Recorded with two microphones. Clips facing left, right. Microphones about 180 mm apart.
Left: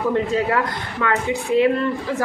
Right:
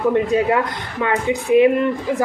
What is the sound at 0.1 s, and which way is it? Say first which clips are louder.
A woman's voice: right 3 dB; 15° right (ahead or behind).